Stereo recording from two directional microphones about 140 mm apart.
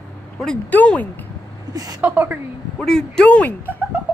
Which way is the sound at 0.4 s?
10° left (ahead or behind).